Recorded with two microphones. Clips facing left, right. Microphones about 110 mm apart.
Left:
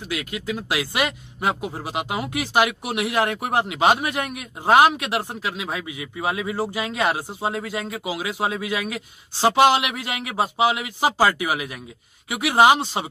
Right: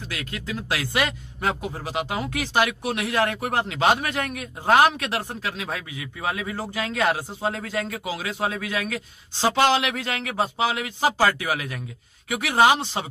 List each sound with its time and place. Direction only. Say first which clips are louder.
0.1 s speech: left 5 dB; 15° left (ahead or behind)